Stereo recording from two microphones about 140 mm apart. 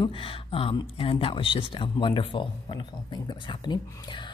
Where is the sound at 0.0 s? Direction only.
40° left (ahead or behind).